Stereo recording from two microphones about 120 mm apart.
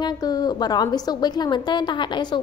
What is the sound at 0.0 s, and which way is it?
A woman's voice, 35° left (ahead or behind).